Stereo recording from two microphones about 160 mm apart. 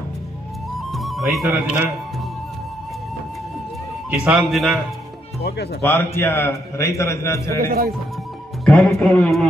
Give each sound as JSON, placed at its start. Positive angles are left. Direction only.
{"t": 0.9, "sound": "music", "side_deg": 0}
{"t": 4.1, "sound": "a man's voice", "side_deg": -5}
{"t": 5.8, "sound": "a man's voice", "side_deg": 15}
{"t": 7.5, "sound": "speech", "side_deg": -65}
{"t": 8.6, "sound": "a man's voice", "side_deg": 5}